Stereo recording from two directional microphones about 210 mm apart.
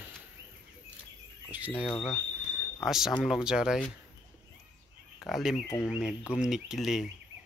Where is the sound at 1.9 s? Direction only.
5° left (ahead or behind).